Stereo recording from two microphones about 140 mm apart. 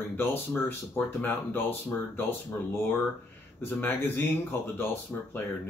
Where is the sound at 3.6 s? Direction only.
15° left (ahead or behind).